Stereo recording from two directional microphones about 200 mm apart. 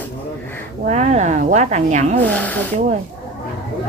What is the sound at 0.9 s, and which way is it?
Speech, 35° right (ahead or behind).